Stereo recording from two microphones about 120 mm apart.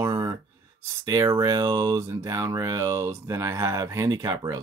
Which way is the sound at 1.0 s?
30° right (ahead or behind).